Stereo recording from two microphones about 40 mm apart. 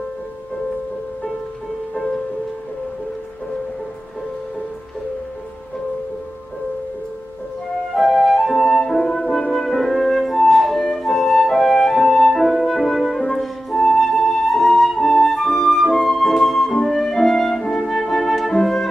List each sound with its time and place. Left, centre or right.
7.9 s music: centre
8.7 s flute: centre
9.5 s music: centre
13.3 s flute: centre
16.1 s music: centre
16.9 s flute: centre